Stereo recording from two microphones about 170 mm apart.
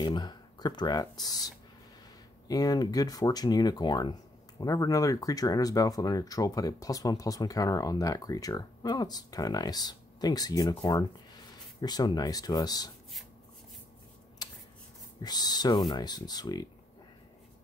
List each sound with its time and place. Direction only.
0.0 s speech: 25° left (ahead or behind)
14.4 s a sound: 25° left (ahead or behind)
15.2 s speech: 25° left (ahead or behind)